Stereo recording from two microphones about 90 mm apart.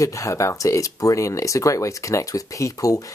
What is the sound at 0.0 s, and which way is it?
Speech, 35° left (ahead or behind).